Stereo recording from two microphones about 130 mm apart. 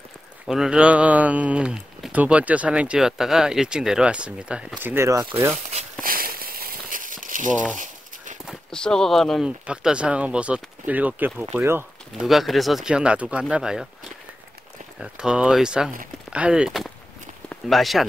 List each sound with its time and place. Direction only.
0.5 s speech: 5° right (ahead or behind); by 5.2 s 20° right (ahead or behind)
6.0 s a sound: 90° right
8.5 s speech: 5° left (ahead or behind)
9.7 s speech: 10° right (ahead or behind)
12.2 s speech: centre (ahead or behind)
15.0 s speech: 5° right (ahead or behind)